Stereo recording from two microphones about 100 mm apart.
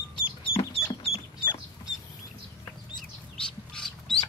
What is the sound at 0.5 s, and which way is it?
Chicken, 75° left (ahead or behind).